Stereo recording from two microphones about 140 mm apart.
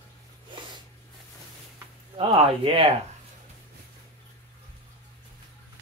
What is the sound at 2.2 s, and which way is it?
Speech, 45° right (ahead or behind).